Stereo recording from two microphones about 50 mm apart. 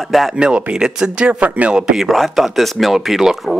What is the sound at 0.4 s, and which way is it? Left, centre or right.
Speech, right.